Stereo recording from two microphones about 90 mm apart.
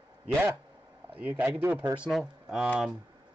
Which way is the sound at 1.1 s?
20° right (ahead or behind).